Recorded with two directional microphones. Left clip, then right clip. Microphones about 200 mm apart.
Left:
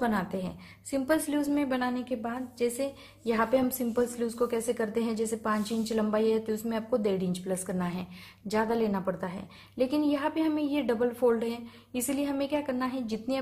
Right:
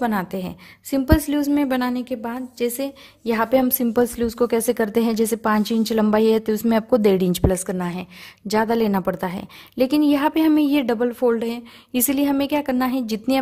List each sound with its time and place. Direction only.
0.0 s a woman's voice: 45° right (ahead or behind)